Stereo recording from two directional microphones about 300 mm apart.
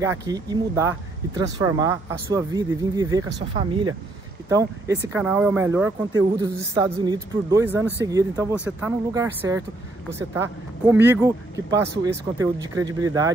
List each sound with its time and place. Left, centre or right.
0.0 s speech: centre